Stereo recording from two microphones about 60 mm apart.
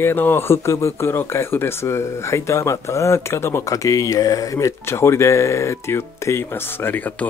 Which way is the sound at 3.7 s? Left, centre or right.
Left.